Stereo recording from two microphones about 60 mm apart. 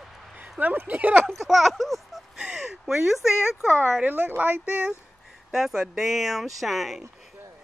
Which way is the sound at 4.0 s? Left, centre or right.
Right.